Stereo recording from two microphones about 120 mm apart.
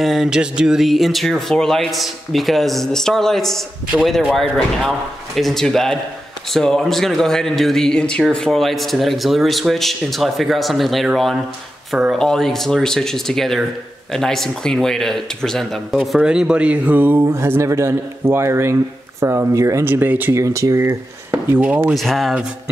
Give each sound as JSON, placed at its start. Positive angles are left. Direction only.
{"t": 0.0, "sound": "speech", "side_deg": 0}
{"t": 21.9, "sound": "speech", "side_deg": 0}